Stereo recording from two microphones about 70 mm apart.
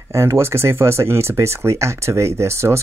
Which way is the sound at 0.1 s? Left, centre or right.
Right.